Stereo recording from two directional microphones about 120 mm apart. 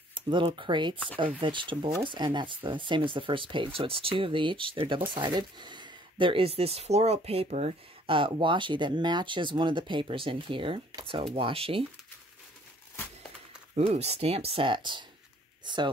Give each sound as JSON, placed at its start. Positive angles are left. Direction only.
{"t": 0.1, "sound": "speech", "side_deg": -45}
{"t": 8.1, "sound": "speech", "side_deg": -45}
{"t": 13.7, "sound": "speech", "side_deg": -60}